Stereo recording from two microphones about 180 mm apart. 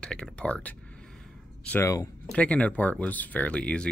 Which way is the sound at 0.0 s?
5° left (ahead or behind).